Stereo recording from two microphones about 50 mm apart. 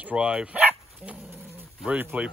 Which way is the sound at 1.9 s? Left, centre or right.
Right.